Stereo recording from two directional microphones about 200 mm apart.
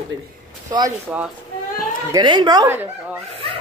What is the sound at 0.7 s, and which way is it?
Speech, 20° right (ahead or behind).